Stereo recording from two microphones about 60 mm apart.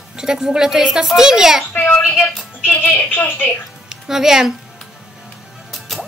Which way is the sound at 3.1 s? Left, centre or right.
Left.